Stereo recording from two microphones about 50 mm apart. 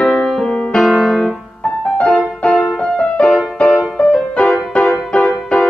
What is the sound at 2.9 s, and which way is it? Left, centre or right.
Music, centre.